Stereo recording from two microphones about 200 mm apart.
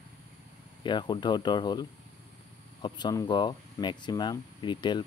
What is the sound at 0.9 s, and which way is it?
Speech, 25° left (ahead or behind).